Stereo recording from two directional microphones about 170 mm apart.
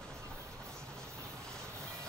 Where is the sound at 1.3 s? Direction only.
5° left (ahead or behind).